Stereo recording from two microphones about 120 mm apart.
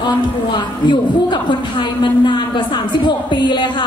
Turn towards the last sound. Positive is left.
turn(degrees=40)  # may be behind; listen again after turning